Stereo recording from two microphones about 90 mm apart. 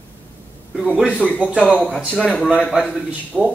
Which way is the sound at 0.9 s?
10° right (ahead or behind).